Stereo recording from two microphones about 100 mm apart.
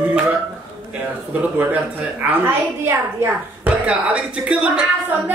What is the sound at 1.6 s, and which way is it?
A woman's voice, 15° right (ahead or behind).